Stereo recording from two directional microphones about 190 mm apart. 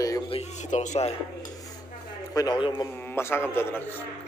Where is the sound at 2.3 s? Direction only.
20° left (ahead or behind).